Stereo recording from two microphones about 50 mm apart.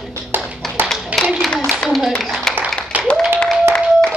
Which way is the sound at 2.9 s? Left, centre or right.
Right.